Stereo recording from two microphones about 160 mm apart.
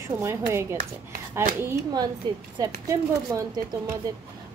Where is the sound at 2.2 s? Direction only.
25° right (ahead or behind).